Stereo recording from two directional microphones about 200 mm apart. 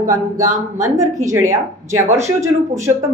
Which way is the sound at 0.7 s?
15° right (ahead or behind).